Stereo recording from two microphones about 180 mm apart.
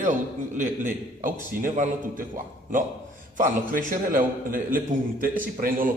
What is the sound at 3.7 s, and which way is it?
A man's voice, 50° right (ahead or behind).